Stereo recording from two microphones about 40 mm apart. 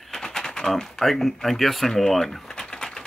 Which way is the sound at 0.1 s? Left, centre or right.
Centre.